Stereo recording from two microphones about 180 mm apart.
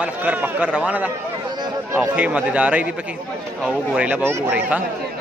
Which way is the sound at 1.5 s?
20° right (ahead or behind).